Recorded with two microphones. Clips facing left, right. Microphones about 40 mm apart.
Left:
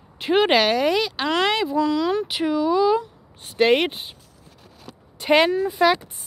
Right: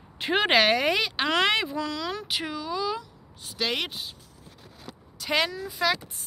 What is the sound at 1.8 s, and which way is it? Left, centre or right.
Speech, centre.